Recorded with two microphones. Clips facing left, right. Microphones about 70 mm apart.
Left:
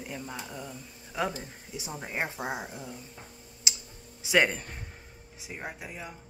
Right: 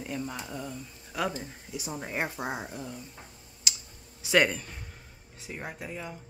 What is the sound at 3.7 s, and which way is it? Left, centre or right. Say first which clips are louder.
Clicking: even; left.